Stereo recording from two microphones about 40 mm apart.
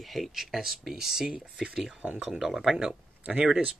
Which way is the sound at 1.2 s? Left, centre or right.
Right.